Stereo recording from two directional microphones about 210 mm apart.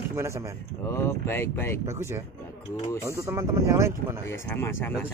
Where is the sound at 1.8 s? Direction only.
15° right (ahead or behind).